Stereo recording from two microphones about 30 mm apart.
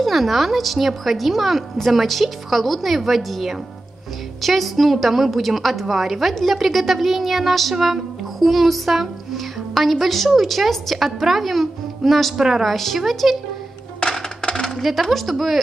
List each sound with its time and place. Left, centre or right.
0.0 s a child's voice: centre
7.8 s music: centre
10.3 s a child's voice: centre
12.4 s a woman's voice: centre
12.6 s a child's voice: centre
14.4 s coin: left
14.8 s a child's voice: centre